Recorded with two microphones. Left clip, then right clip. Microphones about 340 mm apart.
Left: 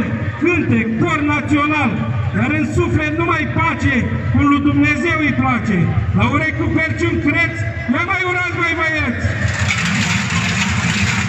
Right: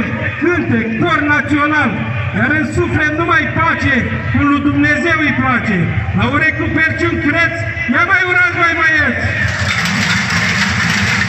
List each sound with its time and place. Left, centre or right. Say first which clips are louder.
1.0 s a man's voice: right 6 dB; centre
3.3 s a man's voice: right 5 dB; left